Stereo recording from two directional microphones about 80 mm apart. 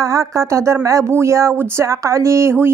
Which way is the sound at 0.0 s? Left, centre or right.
Right.